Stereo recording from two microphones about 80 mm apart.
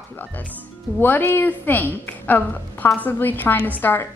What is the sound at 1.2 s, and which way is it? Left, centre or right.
A woman's voice, left.